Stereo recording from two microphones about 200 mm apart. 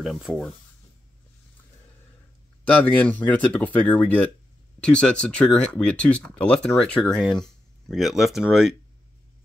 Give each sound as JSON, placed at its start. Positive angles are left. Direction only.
{"t": 0.0, "sound": "speech", "side_deg": 0}
{"t": 2.6, "sound": "speech", "side_deg": 5}